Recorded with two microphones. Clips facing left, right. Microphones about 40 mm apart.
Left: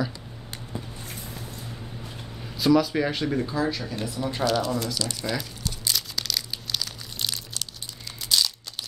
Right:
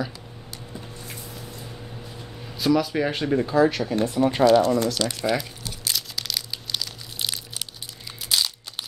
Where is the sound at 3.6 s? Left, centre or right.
Right.